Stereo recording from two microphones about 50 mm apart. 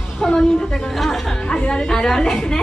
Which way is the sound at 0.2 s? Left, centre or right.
Centre.